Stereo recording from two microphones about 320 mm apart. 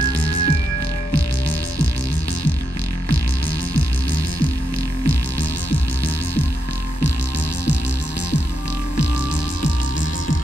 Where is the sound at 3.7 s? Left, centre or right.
Left.